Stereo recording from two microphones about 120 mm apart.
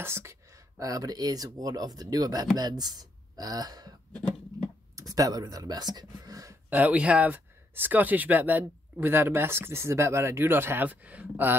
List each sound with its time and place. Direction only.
0.0 s speech: 20° right (ahead or behind)
4.9 s speech: 30° right (ahead or behind)
6.7 s speech: 10° right (ahead or behind)